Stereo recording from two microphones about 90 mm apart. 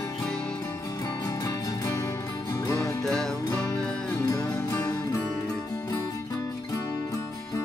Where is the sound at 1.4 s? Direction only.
35° left (ahead or behind).